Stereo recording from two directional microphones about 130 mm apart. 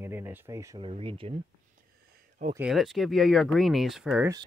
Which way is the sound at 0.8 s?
45° right (ahead or behind).